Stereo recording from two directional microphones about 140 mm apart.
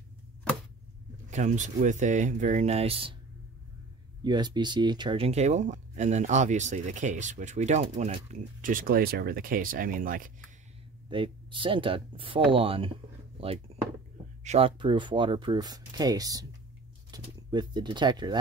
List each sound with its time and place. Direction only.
1.3 s speech: 60° right (ahead or behind); by 3.2 s 40° right (ahead or behind)
4.2 s speech: 30° right (ahead or behind); by 7.8 s 55° right (ahead or behind)
8.5 s speech: 75° right (ahead or behind)
11.1 s speech: 35° right (ahead or behind)
13.7 s a sound: 45° right (ahead or behind)
14.4 s speech: 50° right (ahead or behind)
14.8 s speech: 35° right (ahead or behind)